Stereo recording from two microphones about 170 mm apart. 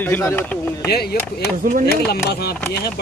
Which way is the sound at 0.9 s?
70° left (ahead or behind).